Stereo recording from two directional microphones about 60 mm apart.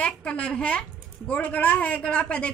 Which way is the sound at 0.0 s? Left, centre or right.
Centre.